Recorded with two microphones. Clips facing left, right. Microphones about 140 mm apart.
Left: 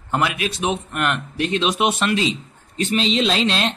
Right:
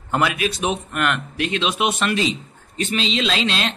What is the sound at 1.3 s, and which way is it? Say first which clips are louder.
Speech: left 2 dB; 90° right.